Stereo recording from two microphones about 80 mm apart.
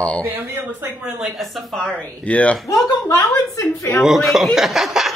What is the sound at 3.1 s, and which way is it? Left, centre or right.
Speech, left.